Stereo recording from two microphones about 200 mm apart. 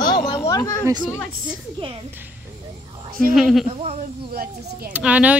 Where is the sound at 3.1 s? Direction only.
45° right (ahead or behind).